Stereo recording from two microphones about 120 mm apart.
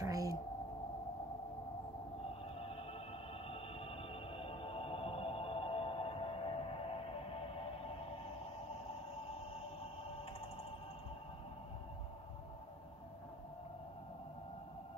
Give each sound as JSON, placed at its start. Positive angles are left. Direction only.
{"t": 0.0, "sound": "whale vocalization", "side_deg": -30}
{"t": 2.6, "sound": "music", "side_deg": 50}